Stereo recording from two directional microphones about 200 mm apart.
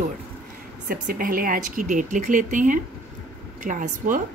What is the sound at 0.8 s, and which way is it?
Speech, 45° right (ahead or behind).